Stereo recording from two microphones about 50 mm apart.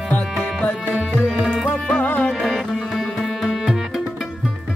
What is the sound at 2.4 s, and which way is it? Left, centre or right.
Music, centre.